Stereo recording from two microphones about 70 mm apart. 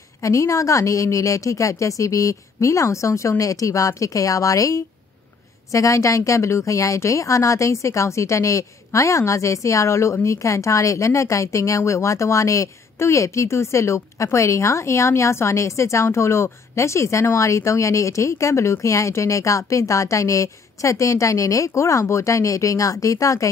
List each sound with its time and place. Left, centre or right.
0.2 s speech: left